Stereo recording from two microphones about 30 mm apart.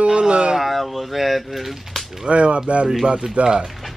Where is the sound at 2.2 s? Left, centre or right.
Right.